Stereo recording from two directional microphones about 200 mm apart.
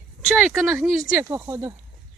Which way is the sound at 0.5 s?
5° right (ahead or behind).